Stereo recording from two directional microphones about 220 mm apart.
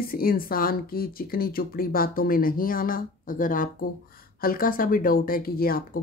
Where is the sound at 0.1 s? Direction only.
40° left (ahead or behind).